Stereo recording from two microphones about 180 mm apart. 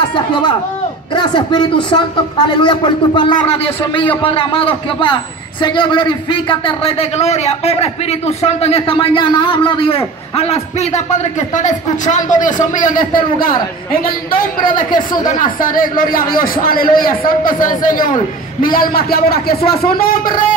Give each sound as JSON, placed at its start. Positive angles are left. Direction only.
{"t": 0.1, "sound": "a man's voice", "side_deg": 25}
{"t": 14.7, "sound": "speech", "side_deg": 25}
{"t": 15.0, "sound": "a man's voice", "side_deg": 45}